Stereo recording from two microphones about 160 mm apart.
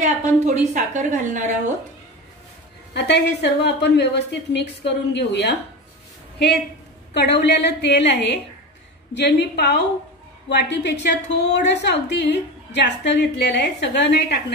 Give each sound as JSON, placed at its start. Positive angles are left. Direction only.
{"t": 0.0, "sound": "a woman's voice", "side_deg": -50}
{"t": 2.9, "sound": "a woman's voice", "side_deg": 90}
{"t": 7.2, "sound": "a woman's voice", "side_deg": 90}